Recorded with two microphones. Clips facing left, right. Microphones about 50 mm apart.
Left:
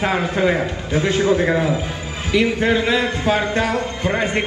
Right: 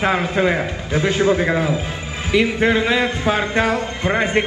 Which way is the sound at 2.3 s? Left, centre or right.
Centre.